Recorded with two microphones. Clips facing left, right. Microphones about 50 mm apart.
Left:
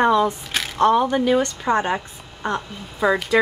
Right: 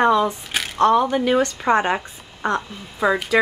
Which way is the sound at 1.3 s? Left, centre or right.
Right.